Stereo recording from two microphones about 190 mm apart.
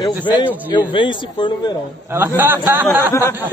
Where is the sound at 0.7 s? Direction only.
25° left (ahead or behind).